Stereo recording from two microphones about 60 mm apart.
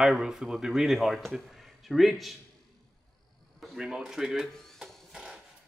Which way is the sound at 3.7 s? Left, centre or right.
Centre.